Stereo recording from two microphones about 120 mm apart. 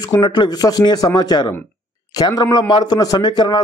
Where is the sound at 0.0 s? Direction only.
35° left (ahead or behind).